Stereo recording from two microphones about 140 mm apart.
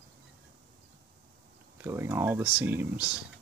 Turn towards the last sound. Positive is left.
turn(degrees=-10)  # may be behind; listen again after turning